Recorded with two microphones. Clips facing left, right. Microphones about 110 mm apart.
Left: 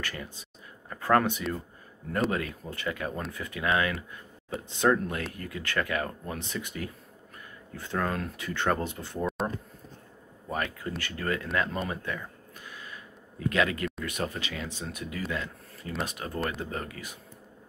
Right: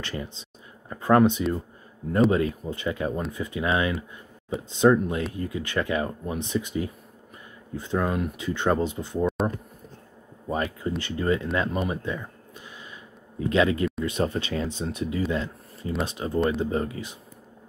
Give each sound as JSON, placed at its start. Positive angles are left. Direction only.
{"t": 0.0, "sound": "speech", "side_deg": -25}
{"t": 10.5, "sound": "speech", "side_deg": -25}
{"t": 11.9, "sound": "a sound", "side_deg": -20}
{"t": 14.0, "sound": "speech", "side_deg": -30}